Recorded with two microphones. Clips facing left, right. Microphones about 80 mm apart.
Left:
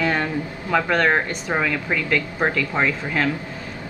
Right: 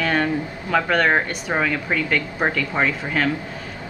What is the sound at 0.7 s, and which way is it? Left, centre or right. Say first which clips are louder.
A woman's voice: even; centre.